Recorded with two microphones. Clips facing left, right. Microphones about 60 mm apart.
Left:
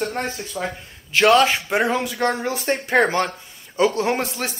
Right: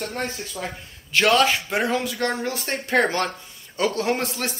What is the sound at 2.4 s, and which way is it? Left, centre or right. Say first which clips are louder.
Speech: left 3 dB; left.